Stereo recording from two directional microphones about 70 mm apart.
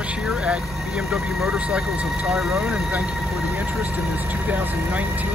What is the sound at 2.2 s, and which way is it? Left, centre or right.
Speech, centre.